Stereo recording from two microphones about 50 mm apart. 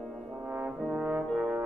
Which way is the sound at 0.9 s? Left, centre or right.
Right.